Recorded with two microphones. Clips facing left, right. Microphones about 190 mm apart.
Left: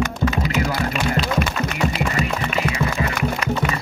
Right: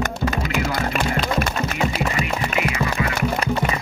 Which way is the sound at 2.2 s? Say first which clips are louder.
Even; 30° left (ahead or behind).